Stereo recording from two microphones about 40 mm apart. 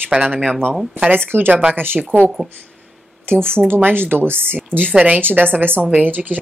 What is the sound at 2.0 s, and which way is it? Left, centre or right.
Speech, right.